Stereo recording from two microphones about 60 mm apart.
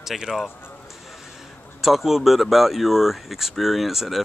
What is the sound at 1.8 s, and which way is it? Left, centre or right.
Speech, centre.